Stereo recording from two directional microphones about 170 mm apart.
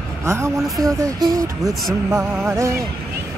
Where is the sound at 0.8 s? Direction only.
20° right (ahead or behind).